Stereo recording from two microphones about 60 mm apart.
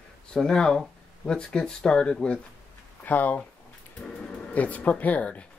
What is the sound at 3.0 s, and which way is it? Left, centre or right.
Speech, left.